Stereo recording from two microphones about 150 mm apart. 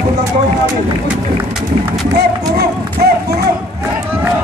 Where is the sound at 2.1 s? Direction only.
90° right.